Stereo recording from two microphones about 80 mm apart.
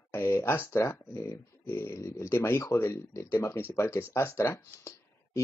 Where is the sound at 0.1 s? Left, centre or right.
Left.